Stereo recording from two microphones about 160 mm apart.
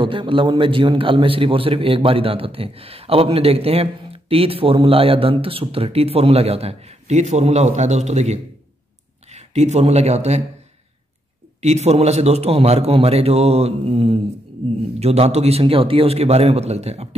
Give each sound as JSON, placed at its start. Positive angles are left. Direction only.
{"t": 0.0, "sound": "a man's voice", "side_deg": -30}
{"t": 11.6, "sound": "a man's voice", "side_deg": -45}